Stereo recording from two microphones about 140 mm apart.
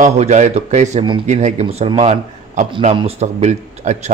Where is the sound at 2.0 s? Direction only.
55° right (ahead or behind).